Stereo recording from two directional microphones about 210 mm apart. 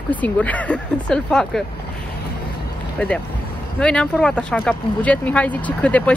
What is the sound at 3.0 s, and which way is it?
Speech, 5° left (ahead or behind).